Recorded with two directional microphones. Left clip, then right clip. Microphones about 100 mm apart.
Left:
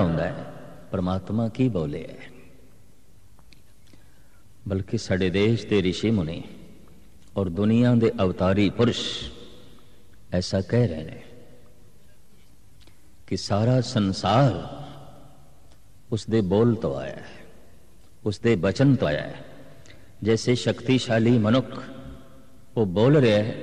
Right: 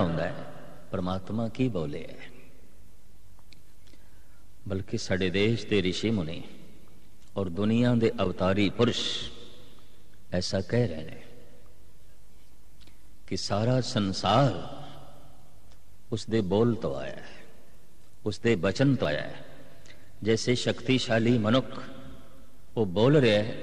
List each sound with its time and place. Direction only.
0.0 s a man's voice: 35° right (ahead or behind)
4.6 s a man's voice: 40° right (ahead or behind)
12.8 s a sound: 35° right (ahead or behind)
16.1 s a man's voice: 40° right (ahead or behind)